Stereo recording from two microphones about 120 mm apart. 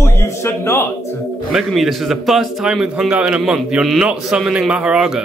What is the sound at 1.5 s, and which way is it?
A man's voice, 5° right (ahead or behind).